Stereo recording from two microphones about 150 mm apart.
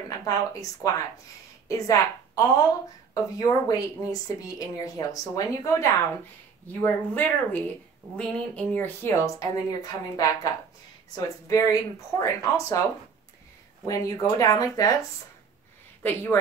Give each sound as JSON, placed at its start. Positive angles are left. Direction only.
{"t": 0.2, "sound": "a woman's voice", "side_deg": 20}
{"t": 13.8, "sound": "a woman's voice", "side_deg": 25}